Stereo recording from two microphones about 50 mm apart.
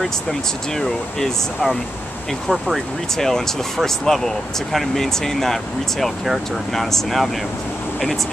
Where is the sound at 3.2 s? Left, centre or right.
Centre.